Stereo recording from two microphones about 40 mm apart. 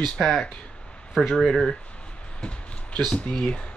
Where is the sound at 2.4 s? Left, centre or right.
Left.